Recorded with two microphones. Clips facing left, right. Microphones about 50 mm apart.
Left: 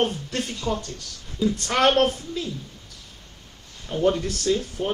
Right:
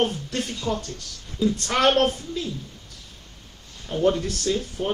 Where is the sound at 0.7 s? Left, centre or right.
Left.